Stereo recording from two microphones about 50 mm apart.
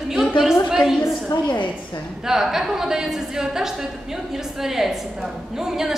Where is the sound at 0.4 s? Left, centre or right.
Centre.